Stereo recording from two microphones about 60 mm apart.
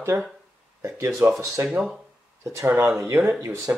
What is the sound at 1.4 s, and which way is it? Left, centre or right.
Speech, right.